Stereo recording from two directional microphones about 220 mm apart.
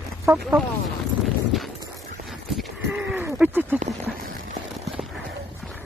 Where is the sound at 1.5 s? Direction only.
Centre (ahead or behind).